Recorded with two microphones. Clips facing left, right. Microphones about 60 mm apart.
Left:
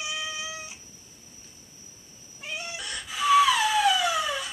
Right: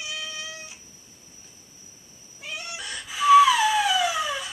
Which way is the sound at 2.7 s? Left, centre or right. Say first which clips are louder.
Right 1 dB; centre.